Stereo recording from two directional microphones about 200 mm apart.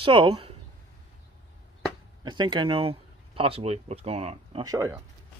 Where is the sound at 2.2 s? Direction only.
20° right (ahead or behind).